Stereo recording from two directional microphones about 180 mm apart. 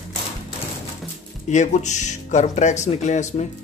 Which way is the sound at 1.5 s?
40° left (ahead or behind).